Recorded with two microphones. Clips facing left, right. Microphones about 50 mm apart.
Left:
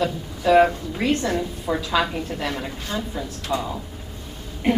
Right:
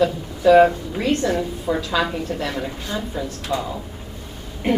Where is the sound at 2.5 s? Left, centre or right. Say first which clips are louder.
Right 2 dB; centre.